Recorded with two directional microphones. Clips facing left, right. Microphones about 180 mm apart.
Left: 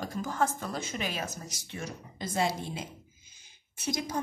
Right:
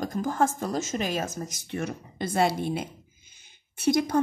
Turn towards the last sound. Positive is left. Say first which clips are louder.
# right 10 dB
turn(degrees=-60)  # may be behind; listen again after turning